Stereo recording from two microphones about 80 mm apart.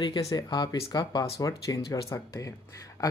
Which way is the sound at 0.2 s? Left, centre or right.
Left.